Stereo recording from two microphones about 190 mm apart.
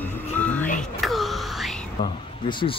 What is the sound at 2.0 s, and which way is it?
Speech, 25° left (ahead or behind).